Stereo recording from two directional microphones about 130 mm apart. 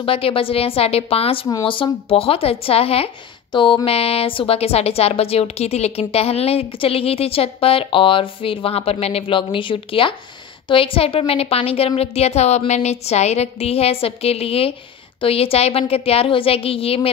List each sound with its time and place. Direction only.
0.0 s a woman's voice: 45° left (ahead or behind)